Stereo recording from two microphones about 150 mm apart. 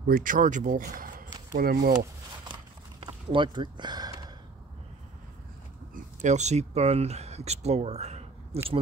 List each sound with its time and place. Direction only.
0.1 s speech: 65° right (ahead or behind); by 2.0 s 80° right
3.3 s speech: 30° right (ahead or behind)
6.2 s speech: 50° right (ahead or behind)